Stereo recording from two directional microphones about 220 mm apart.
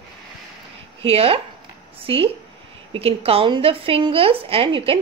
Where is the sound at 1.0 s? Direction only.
25° right (ahead or behind).